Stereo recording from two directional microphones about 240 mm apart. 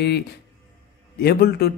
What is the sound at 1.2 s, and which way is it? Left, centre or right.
Speech, left.